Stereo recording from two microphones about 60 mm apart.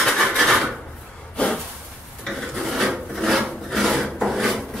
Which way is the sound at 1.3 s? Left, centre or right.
Centre.